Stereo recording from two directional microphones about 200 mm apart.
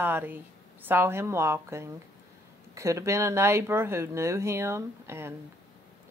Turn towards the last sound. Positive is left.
turn(degrees=-10)  # may be behind; listen again after turning